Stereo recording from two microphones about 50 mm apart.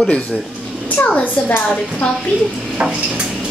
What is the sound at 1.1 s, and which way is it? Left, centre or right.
Speech, left.